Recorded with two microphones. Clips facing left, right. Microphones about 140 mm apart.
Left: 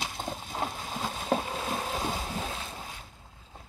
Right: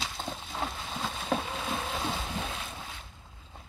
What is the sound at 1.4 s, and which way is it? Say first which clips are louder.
Boat: left 1 dB; 10° left (ahead or behind).